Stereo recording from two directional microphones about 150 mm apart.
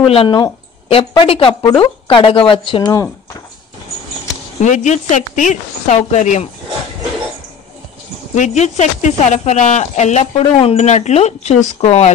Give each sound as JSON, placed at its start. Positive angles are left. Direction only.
{"t": 0.0, "sound": "speech", "side_deg": 40}
{"t": 4.6, "sound": "speech", "side_deg": 55}
{"t": 8.4, "sound": "speech", "side_deg": 50}